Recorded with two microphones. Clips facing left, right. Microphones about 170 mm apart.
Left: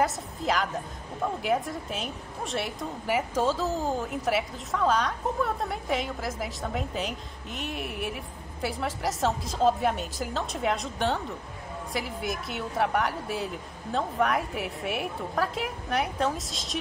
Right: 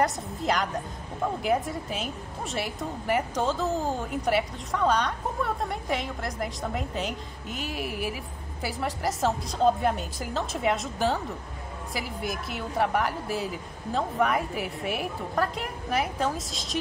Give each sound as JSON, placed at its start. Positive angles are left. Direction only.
{"t": 0.0, "sound": "a woman's voice", "side_deg": 0}